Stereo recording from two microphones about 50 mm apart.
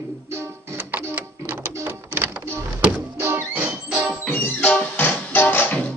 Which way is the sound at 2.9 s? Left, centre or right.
Right.